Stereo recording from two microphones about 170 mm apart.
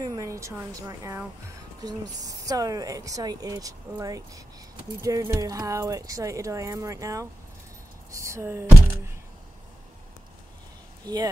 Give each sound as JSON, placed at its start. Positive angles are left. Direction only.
{"t": 0.0, "sound": "speech", "side_deg": -20}